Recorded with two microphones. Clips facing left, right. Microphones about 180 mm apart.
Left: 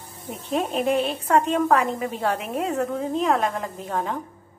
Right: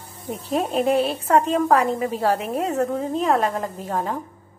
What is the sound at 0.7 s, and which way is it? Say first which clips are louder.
Speech: right 3 dB; 35° right (ahead or behind).